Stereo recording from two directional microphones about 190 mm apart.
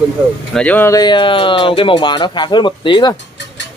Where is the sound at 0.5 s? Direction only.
10° left (ahead or behind); by 3.1 s 25° left (ahead or behind).